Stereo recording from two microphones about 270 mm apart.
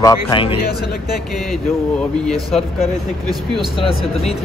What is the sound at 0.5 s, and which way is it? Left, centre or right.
Speech, left.